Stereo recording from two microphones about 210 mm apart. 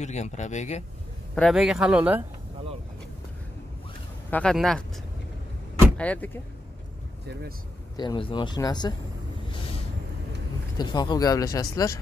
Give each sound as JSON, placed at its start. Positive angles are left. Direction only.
{"t": 0.0, "sound": "speech", "side_deg": 30}
{"t": 1.3, "sound": "speech", "side_deg": 0}
{"t": 4.3, "sound": "speech", "side_deg": 5}
{"t": 5.9, "sound": "speech", "side_deg": 5}
{"t": 7.9, "sound": "speech", "side_deg": 20}
{"t": 10.8, "sound": "speech", "side_deg": 20}